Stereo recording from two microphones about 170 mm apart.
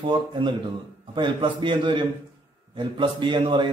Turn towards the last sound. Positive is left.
turn(degrees=-30)  # may be behind; listen again after turning